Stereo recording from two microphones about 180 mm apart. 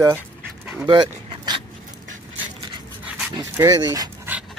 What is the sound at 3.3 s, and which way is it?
Speech, 20° right (ahead or behind).